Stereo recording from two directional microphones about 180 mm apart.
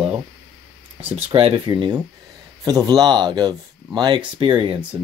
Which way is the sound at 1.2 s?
30° right (ahead or behind).